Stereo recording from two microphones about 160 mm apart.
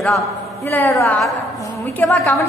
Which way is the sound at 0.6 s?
15° left (ahead or behind).